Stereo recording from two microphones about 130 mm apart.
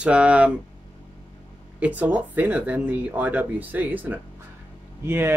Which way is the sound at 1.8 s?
10° right (ahead or behind).